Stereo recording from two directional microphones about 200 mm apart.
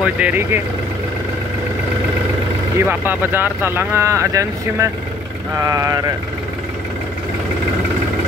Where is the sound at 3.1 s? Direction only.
10° right (ahead or behind).